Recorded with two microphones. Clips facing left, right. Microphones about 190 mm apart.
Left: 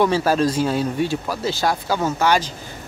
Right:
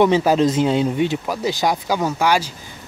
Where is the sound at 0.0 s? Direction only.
20° right (ahead or behind).